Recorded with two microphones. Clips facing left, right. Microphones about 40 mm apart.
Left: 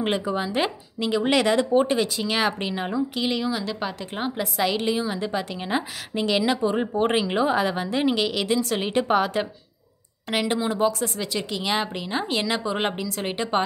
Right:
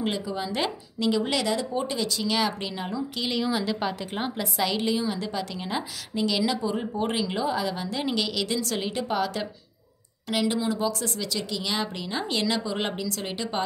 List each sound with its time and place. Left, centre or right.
0.0 s speech: left
0.5 s a woman's voice: left
1.3 s speech: left
3.4 s a woman's voice: centre; by 8.9 s left
8.9 s speech: left
10.5 s a woman's voice: left